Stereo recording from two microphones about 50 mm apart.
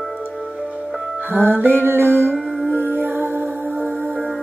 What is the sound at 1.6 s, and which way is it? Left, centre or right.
Mantra, right.